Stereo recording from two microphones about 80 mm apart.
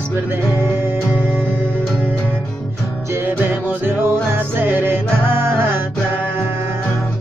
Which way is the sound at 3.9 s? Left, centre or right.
Right.